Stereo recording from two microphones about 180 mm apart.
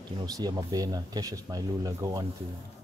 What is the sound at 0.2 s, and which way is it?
Speech, 25° right (ahead or behind).